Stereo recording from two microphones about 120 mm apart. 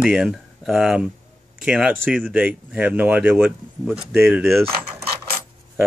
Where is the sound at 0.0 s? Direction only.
5° right (ahead or behind); by 4.6 s 20° right (ahead or behind).